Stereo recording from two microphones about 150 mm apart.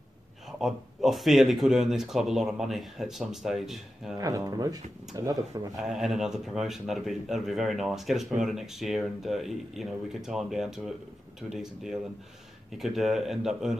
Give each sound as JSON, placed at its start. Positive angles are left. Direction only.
{"t": 0.5, "sound": "speech", "side_deg": 0}
{"t": 4.2, "sound": "speech", "side_deg": -25}
{"t": 5.8, "sound": "speech", "side_deg": 0}